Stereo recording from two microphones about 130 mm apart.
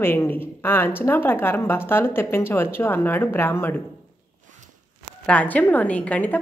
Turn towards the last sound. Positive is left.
turn(degrees=10)  # may be behind; listen again after turning